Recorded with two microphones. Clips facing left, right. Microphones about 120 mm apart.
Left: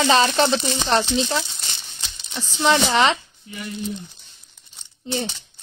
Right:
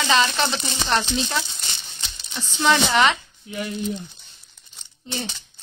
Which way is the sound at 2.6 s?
30° left (ahead or behind).